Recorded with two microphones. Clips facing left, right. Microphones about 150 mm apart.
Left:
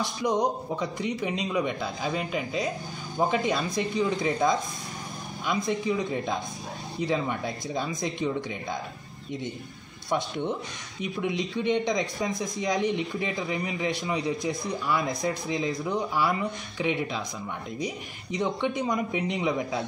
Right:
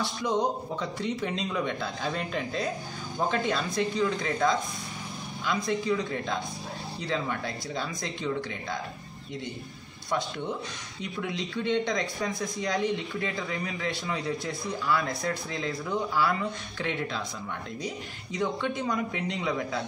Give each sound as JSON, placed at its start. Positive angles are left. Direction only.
{"t": 0.0, "sound": "speech", "side_deg": 15}
{"t": 10.0, "sound": "speech", "side_deg": 20}